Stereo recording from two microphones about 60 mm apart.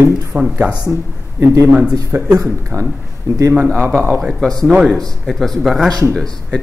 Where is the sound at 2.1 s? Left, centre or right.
Right.